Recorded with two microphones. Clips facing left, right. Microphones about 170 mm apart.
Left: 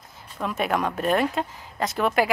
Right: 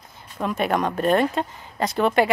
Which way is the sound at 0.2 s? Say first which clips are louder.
Right 3 dB; centre (ahead or behind).